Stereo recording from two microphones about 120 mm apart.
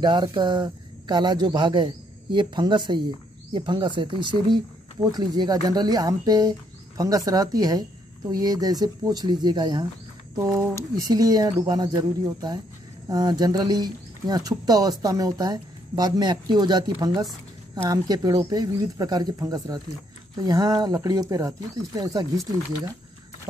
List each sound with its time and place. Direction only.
0.0 s speech: 40° right (ahead or behind)